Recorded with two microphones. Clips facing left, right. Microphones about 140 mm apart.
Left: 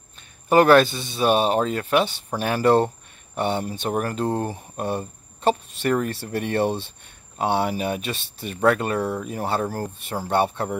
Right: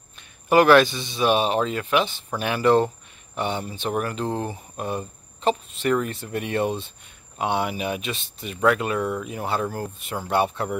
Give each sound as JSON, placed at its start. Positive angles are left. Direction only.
{"t": 0.5, "sound": "speech", "side_deg": 35}
{"t": 6.2, "sound": "speech", "side_deg": 35}